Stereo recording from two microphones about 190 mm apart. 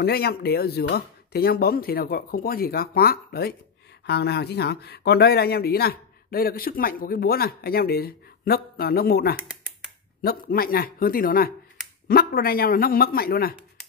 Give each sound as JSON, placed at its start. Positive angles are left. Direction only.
{"t": 0.0, "sound": "speech", "side_deg": 55}